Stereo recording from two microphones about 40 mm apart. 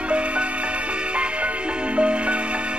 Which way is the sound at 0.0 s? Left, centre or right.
Right.